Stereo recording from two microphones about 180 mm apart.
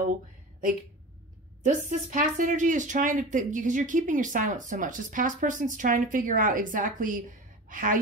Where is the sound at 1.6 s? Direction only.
45° right (ahead or behind).